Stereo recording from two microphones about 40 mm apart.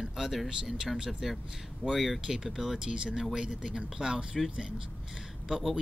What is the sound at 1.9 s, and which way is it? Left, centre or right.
Speech, centre.